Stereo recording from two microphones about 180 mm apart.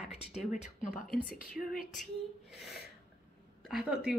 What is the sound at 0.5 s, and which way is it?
Speech, 45° left (ahead or behind).